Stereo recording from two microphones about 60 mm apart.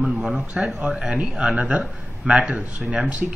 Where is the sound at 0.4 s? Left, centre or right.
Centre.